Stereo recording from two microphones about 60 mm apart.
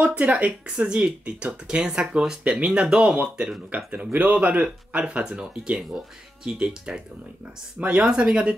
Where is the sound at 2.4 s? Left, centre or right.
Centre.